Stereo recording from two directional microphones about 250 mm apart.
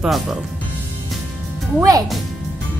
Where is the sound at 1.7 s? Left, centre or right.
Centre.